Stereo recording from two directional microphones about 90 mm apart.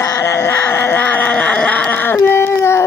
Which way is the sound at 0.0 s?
30° left (ahead or behind).